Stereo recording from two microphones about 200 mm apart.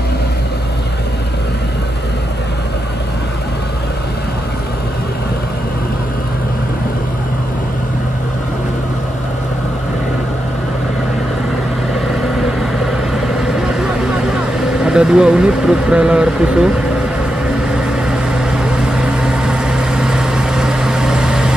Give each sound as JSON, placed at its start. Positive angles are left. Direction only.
{"t": 14.9, "sound": "speech", "side_deg": -5}
{"t": 18.8, "sound": "vehicle", "side_deg": -5}